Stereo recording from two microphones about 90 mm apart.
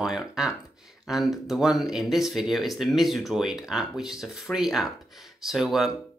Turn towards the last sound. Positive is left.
turn(degrees=-5)  # may be behind; listen again after turning